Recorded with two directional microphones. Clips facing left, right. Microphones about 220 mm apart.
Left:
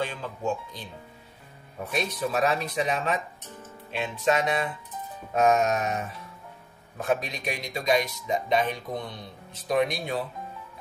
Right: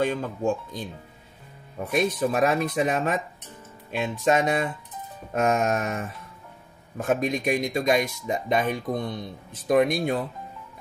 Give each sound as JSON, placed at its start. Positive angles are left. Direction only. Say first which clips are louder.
{"t": 0.0, "sound": "speech", "louder": "right 6 dB", "side_deg": -45}
{"t": 1.9, "sound": "speech", "louder": "right 5 dB", "side_deg": -50}